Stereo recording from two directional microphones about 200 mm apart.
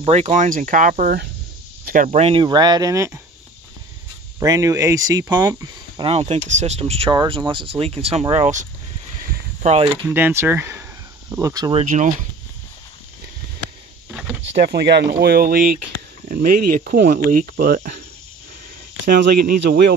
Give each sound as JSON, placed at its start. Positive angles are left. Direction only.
{"t": 0.0, "sound": "speech", "side_deg": -35}
{"t": 2.0, "sound": "speech", "side_deg": -30}
{"t": 4.4, "sound": "speech", "side_deg": -15}
{"t": 6.0, "sound": "speech", "side_deg": -30}
{"t": 9.3, "sound": "a sound", "side_deg": -35}
{"t": 10.0, "sound": "speech", "side_deg": -10}
{"t": 11.8, "sound": "speech", "side_deg": -40}
{"t": 14.6, "sound": "speech", "side_deg": -55}
{"t": 19.0, "sound": "speech", "side_deg": -55}